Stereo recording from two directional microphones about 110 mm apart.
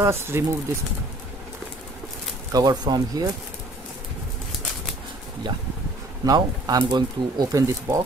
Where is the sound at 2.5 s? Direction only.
40° right (ahead or behind).